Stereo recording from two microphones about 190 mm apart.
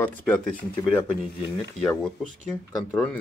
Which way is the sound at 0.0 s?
5° left (ahead or behind).